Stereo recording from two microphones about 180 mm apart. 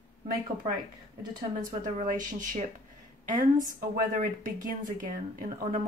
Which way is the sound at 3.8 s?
50° right (ahead or behind).